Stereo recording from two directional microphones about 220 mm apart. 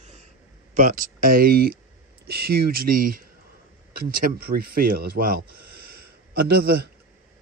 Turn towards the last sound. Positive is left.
turn(degrees=-45)  # may be behind; listen again after turning